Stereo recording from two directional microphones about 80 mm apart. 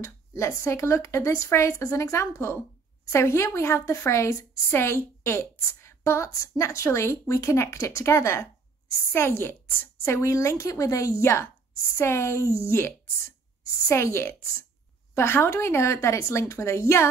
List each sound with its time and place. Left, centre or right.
0.0 s a woman's voice: left